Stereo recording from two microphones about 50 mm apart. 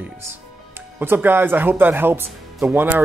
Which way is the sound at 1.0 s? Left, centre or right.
Right.